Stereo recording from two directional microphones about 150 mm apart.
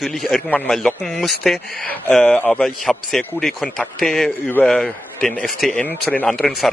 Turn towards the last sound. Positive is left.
turn(degrees=5)  # may be behind; listen again after turning